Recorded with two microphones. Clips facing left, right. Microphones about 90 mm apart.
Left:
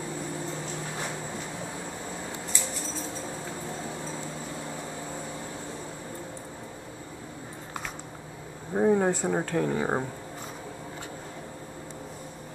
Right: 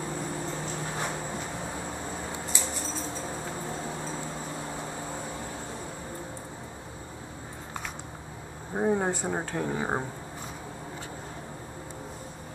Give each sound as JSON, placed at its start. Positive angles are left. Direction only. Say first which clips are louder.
{"t": 8.7, "sound": "speech", "louder": "left 4 dB", "side_deg": -10}